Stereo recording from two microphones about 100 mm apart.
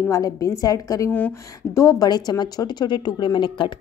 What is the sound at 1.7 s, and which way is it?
Speech, 35° left (ahead or behind).